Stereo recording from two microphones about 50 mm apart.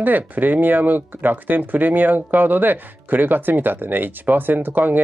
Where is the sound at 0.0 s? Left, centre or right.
Right.